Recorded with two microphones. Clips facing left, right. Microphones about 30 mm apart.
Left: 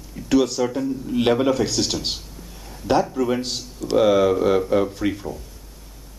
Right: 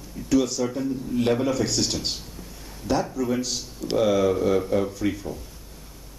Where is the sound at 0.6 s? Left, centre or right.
Centre.